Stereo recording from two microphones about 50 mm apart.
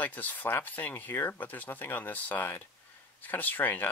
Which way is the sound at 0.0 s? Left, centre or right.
Left.